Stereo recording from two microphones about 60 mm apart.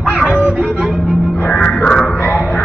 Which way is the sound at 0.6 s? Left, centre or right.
Centre.